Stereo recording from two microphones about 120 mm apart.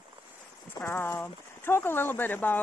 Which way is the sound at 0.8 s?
20° left (ahead or behind).